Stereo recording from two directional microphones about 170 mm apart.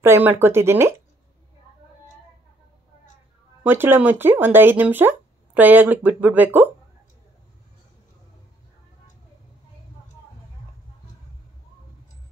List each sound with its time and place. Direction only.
0.0 s speech: 15° right (ahead or behind)
3.6 s speech: 15° right (ahead or behind)